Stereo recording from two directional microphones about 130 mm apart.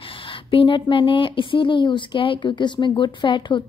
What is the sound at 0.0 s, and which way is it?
A woman's voice, 40° left (ahead or behind).